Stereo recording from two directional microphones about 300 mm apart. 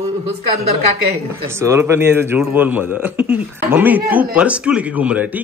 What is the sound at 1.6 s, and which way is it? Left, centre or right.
A man's voice, centre.